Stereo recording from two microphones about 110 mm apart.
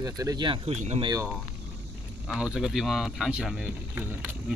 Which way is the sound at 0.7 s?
80° right.